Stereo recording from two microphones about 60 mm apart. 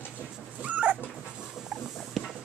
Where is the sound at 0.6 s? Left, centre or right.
Right.